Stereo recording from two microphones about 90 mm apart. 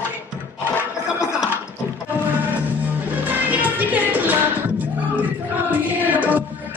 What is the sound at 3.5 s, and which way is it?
Music, 20° right (ahead or behind).